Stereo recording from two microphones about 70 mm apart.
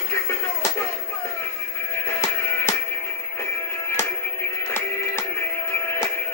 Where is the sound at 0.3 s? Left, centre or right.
Left.